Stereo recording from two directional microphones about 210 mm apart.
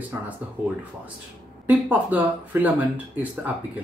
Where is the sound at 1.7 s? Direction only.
10° right (ahead or behind).